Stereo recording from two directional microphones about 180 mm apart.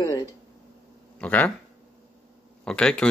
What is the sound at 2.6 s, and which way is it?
Speech, 5° left (ahead or behind).